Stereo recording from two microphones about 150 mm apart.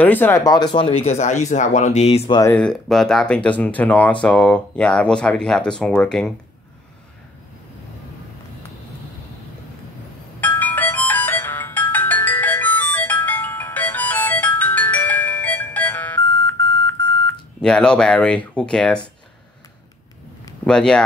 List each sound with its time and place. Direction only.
0.0 s speech: 10° left (ahead or behind); by 2.3 s 45° left (ahead or behind)
2.5 s speech: 5° left (ahead or behind)
10.4 s music: 10° left (ahead or behind)
17.6 s speech: 5° left (ahead or behind)
20.6 s speech: 5° left (ahead or behind)